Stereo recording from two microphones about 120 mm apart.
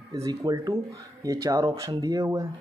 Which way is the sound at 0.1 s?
30° right (ahead or behind).